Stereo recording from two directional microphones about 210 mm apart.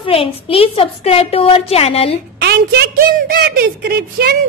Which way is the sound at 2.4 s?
50° right (ahead or behind).